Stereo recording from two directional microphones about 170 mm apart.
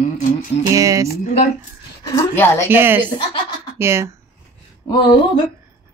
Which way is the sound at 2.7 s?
10° right (ahead or behind).